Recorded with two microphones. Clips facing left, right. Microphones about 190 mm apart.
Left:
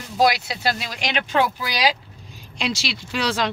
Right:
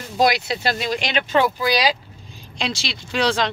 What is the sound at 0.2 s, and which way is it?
Speech, 5° left (ahead or behind).